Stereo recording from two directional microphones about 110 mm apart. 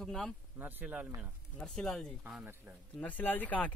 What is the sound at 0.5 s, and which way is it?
Speech, 15° right (ahead or behind).